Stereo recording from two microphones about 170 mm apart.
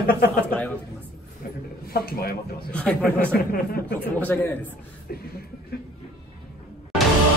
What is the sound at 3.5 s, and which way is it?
Speech, 60° left (ahead or behind).